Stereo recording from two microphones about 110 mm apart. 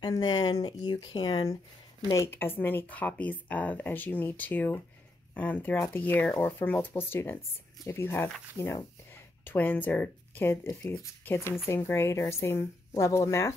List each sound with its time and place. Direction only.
0.0 s speech: 40° left (ahead or behind)
2.3 s speech: 20° left (ahead or behind)